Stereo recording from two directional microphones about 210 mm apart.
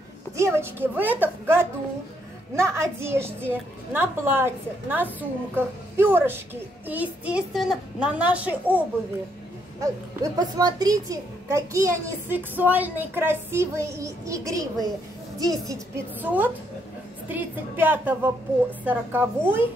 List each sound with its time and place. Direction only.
0.4 s a woman's voice: 10° right (ahead or behind)